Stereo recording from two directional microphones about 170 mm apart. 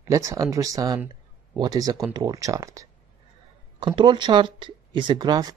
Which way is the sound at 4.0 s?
25° right (ahead or behind).